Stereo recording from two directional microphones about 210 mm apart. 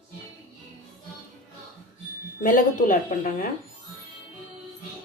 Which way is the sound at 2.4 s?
40° left (ahead or behind).